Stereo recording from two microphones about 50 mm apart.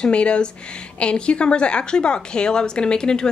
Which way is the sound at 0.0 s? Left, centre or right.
Left.